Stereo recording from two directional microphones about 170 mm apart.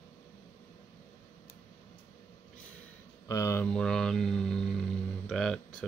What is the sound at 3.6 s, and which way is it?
Speech, 5° left (ahead or behind).